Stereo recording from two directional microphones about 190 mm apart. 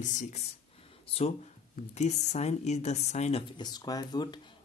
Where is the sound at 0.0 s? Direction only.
40° left (ahead or behind).